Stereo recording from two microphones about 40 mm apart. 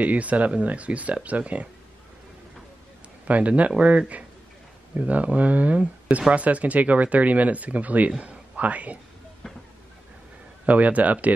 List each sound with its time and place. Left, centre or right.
0.0 s speech: right
3.3 s a man's voice: right
10.6 s speech: right